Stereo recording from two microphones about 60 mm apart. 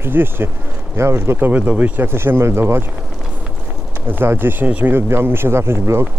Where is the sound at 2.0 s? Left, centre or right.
Right.